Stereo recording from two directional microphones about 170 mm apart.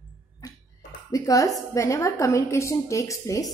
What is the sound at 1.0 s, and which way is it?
A woman's voice, 20° left (ahead or behind).